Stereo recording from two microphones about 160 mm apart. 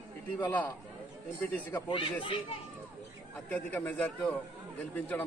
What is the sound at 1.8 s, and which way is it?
Speech, 30° left (ahead or behind).